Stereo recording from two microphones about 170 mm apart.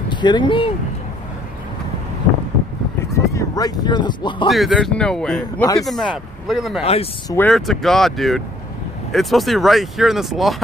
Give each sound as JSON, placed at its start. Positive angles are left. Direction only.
{"t": 0.1, "sound": "speech", "side_deg": 25}
{"t": 3.3, "sound": "speech", "side_deg": 20}
{"t": 4.5, "sound": "speech", "side_deg": 0}
{"t": 6.8, "sound": "speech", "side_deg": 35}
{"t": 7.2, "sound": "speech", "side_deg": 10}
{"t": 7.5, "sound": "speech", "side_deg": 0}